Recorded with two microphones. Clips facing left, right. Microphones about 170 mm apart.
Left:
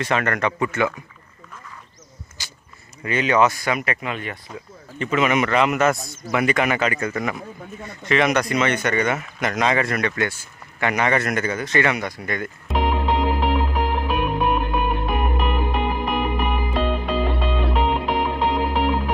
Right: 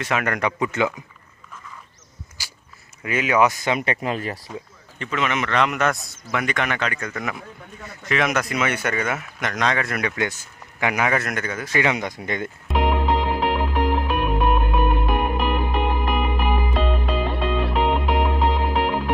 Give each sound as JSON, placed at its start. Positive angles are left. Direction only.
{"t": 0.0, "sound": "speech", "side_deg": -10}
{"t": 2.4, "sound": "a sound", "side_deg": -10}
{"t": 3.0, "sound": "speech", "side_deg": -5}
{"t": 4.5, "sound": "a man's voice", "side_deg": 5}
{"t": 12.6, "sound": "music", "side_deg": 0}